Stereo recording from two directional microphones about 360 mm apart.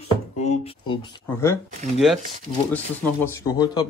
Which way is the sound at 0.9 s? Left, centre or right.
Centre.